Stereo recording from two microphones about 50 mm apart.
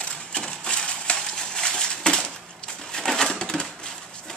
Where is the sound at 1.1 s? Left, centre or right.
Centre.